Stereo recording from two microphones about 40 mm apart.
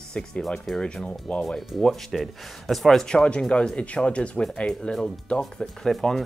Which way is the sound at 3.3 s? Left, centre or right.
Left.